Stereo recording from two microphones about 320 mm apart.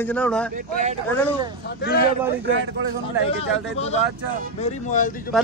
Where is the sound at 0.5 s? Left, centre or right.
Right.